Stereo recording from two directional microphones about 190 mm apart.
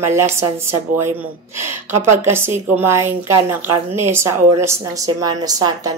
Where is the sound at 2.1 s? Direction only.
10° right (ahead or behind).